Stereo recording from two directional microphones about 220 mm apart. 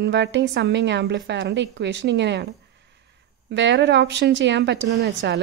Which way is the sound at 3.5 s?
55° right (ahead or behind).